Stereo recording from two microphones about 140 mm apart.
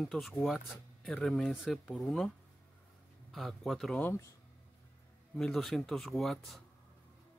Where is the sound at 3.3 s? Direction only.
Centre (ahead or behind).